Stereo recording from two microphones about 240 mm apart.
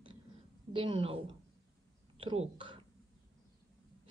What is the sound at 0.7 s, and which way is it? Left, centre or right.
Speech, right.